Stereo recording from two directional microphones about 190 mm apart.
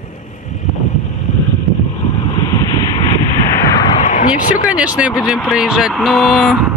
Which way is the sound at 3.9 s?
40° left (ahead or behind).